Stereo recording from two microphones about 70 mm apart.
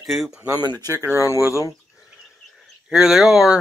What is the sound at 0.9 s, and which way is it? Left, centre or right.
Speech, right.